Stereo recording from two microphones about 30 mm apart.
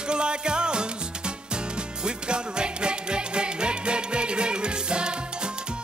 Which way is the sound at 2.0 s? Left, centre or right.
Right.